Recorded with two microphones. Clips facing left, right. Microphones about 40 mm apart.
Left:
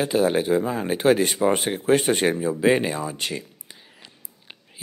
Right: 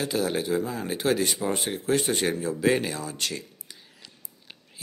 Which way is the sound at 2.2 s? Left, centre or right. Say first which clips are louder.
Left 4 dB; left.